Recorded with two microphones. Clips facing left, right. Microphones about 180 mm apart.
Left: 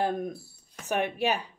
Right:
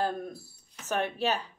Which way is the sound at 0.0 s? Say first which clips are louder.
Left 3 dB; 15° left (ahead or behind).